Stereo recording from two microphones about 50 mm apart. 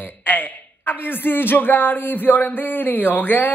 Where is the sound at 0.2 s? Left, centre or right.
Left.